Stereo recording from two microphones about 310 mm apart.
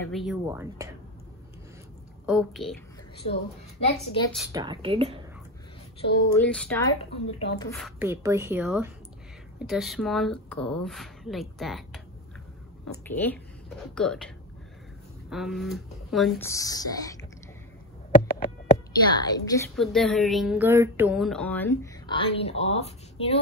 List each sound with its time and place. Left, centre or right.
0.0 s speech: centre
2.2 s speech: centre
3.8 s speech: centre
4.5 s a woman's voice: centre
6.3 s speech: centre
7.7 s a woman's voice: centre
18.3 s a sound: centre
19.7 s speech: centre